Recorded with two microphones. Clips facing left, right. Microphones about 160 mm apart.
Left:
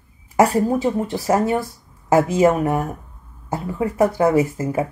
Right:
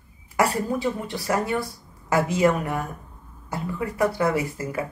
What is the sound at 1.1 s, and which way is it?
Speech, 45° left (ahead or behind).